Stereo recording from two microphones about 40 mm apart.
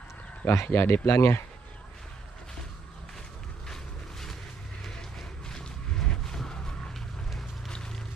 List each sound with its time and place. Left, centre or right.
0.5 s speech: left
3.6 s vehicle: centre
5.5 s a sound: centre